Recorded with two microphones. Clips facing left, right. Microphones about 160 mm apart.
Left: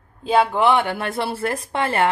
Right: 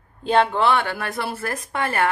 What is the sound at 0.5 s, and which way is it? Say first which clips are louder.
Speech: left 2 dB; 15° left (ahead or behind).